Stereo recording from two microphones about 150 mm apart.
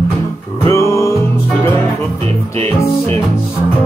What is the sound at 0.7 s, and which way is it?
Music, 20° left (ahead or behind).